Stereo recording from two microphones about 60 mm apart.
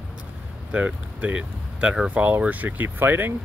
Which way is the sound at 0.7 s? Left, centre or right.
Right.